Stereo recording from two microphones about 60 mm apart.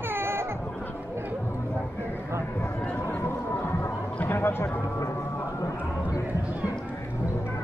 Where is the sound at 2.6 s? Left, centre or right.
Left.